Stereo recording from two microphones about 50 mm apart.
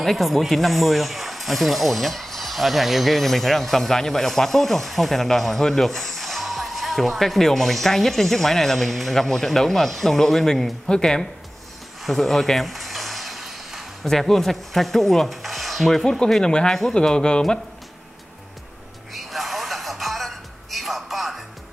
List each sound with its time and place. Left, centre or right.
0.0 s speech: centre
12.0 s a sound: centre
14.0 s speech: centre
19.1 s music: centre